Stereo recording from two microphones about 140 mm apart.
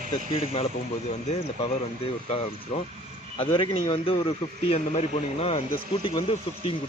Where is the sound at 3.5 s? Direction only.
40° left (ahead or behind).